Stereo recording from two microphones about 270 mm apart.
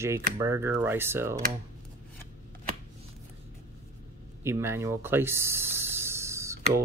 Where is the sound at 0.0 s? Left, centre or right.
Centre.